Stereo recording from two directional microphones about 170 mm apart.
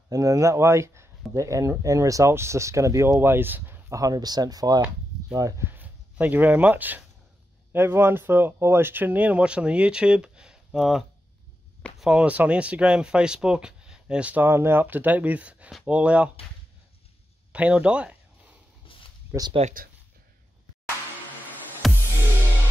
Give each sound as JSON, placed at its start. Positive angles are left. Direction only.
{"t": 0.1, "sound": "speech", "side_deg": -20}
{"t": 17.5, "sound": "speech", "side_deg": -10}
{"t": 18.9, "sound": "a sound", "side_deg": 30}
{"t": 19.3, "sound": "speech", "side_deg": -15}
{"t": 21.8, "sound": "music", "side_deg": 0}